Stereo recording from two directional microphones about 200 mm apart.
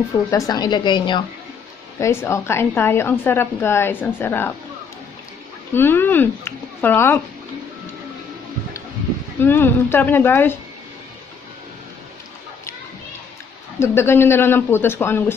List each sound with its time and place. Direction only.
0.3 s a woman's voice: 20° left (ahead or behind)
5.7 s a woman's voice: 10° left (ahead or behind)
9.4 s a woman's voice: 10° left (ahead or behind)
13.7 s a woman's voice: 10° left (ahead or behind)